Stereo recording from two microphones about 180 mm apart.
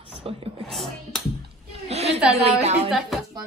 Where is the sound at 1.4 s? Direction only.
35° right (ahead or behind).